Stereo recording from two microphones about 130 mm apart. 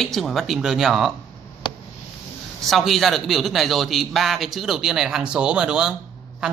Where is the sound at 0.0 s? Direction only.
Centre (ahead or behind).